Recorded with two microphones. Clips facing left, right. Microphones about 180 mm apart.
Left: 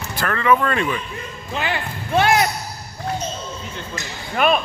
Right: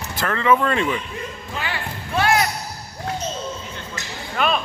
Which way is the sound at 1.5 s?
25° left (ahead or behind).